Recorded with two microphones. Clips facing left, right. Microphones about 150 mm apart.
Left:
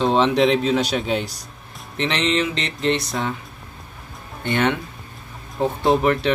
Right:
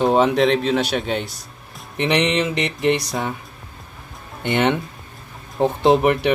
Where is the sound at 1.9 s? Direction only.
15° right (ahead or behind).